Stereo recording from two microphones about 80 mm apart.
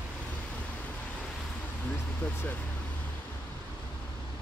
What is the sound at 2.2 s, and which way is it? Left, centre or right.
Speech, left.